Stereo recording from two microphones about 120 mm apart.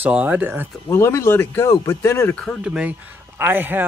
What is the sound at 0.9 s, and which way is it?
Speech, 20° left (ahead or behind).